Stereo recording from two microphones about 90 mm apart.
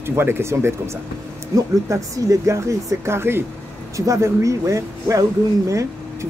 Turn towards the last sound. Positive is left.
turn(degrees=-35)  # may be behind; listen again after turning